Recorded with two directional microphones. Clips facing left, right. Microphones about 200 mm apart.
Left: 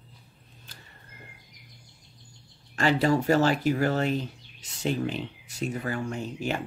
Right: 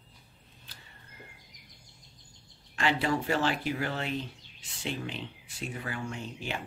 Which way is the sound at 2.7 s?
40° left (ahead or behind).